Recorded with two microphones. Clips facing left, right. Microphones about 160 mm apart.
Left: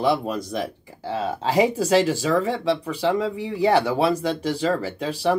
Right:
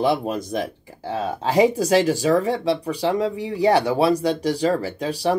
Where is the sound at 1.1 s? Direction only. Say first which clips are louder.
Right 1 dB; 15° right (ahead or behind).